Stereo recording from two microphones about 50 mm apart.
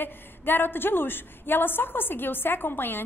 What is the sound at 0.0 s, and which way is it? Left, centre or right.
A woman's voice, left.